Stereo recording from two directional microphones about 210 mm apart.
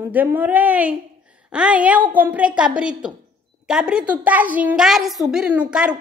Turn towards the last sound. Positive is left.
turn(degrees=-5)  # may be behind; listen again after turning